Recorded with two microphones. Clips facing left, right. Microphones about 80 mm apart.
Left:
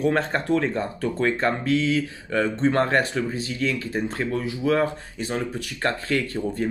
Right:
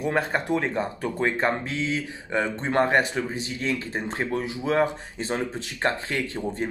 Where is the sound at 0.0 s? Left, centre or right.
Centre.